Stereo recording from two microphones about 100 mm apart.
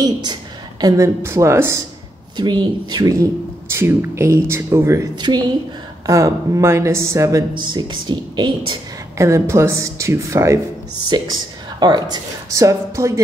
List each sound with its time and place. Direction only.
0.0 s a woman's voice: 45° right (ahead or behind); by 1.8 s 25° right (ahead or behind)
2.3 s speech: 45° right (ahead or behind); by 7.4 s 30° right (ahead or behind)
7.5 s speech: 50° right (ahead or behind)
9.2 s speech: 30° right (ahead or behind)
11.1 s speech: 45° right (ahead or behind); by 13.2 s 30° right (ahead or behind)